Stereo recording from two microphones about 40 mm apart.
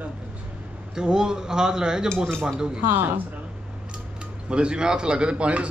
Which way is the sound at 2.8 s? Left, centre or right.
Right.